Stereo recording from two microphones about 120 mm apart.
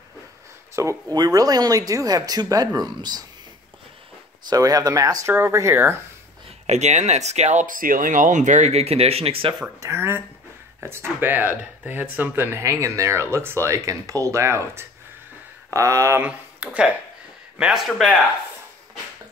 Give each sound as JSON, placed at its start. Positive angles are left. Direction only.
{"t": 0.7, "sound": "speech", "side_deg": -25}
{"t": 4.5, "sound": "speech", "side_deg": -30}
{"t": 6.7, "sound": "speech", "side_deg": -70}
{"t": 9.8, "sound": "speech", "side_deg": -20}
{"t": 16.3, "sound": "speech", "side_deg": -10}